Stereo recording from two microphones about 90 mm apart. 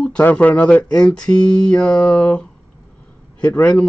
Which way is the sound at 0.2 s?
15° left (ahead or behind).